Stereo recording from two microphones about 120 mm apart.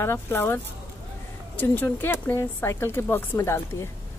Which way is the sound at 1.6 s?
15° left (ahead or behind).